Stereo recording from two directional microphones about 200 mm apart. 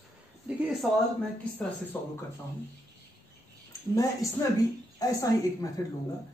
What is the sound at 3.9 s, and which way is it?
Speech, 15° left (ahead or behind).